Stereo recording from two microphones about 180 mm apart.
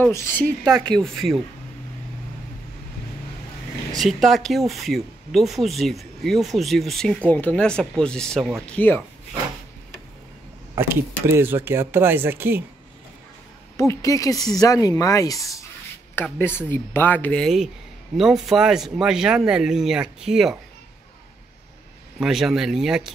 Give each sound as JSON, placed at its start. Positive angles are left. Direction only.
{"t": 0.0, "sound": "speech", "side_deg": 15}
{"t": 0.7, "sound": "speech", "side_deg": 5}
{"t": 3.9, "sound": "speech", "side_deg": 0}
{"t": 10.7, "sound": "speech", "side_deg": -15}
{"t": 13.7, "sound": "speech", "side_deg": 15}
{"t": 22.2, "sound": "speech", "side_deg": 0}